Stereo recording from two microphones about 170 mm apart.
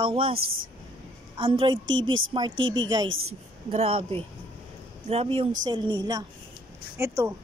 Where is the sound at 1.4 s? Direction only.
30° right (ahead or behind).